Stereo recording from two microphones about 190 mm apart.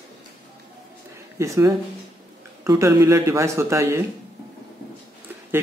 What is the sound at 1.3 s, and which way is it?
Speech, 15° right (ahead or behind).